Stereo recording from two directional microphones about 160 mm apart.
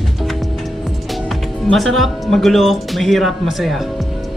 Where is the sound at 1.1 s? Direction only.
Centre (ahead or behind).